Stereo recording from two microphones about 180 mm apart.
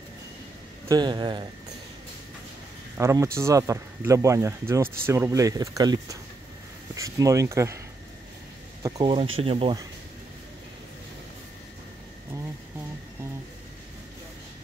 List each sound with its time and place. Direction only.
0.8 s speech: 25° right (ahead or behind)
3.0 s speech: 15° right (ahead or behind)
8.8 s speech: 20° right (ahead or behind)